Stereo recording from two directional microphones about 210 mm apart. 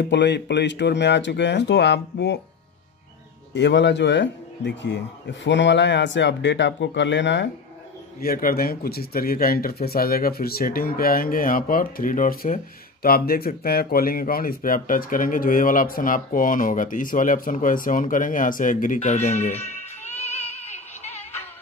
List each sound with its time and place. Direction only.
0.1 s speech: 55° left (ahead or behind)
3.5 s speech: 55° left (ahead or behind)
8.2 s speech: 45° left (ahead or behind)